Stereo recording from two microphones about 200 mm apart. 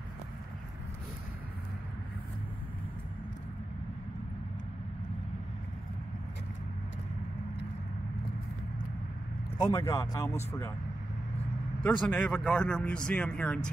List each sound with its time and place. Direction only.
9.6 s speech: 15° left (ahead or behind)
11.8 s speech: 10° left (ahead or behind)